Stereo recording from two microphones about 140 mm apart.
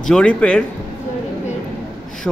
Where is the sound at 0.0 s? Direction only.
5° left (ahead or behind).